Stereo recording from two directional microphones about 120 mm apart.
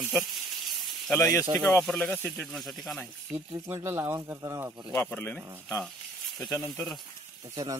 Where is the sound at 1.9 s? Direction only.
5° left (ahead or behind).